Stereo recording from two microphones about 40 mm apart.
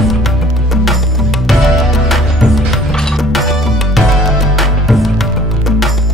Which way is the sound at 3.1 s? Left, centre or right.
Centre.